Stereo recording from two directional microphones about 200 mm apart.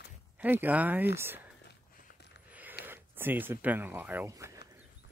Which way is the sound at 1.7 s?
55° left (ahead or behind).